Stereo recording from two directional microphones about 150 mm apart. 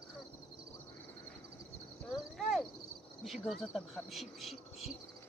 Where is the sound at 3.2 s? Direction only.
Centre (ahead or behind).